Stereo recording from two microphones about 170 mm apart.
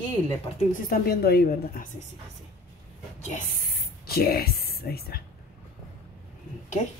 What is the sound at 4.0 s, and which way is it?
Speech, 65° left (ahead or behind).